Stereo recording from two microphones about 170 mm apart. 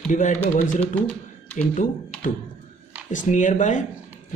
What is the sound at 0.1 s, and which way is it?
Speech, 45° left (ahead or behind).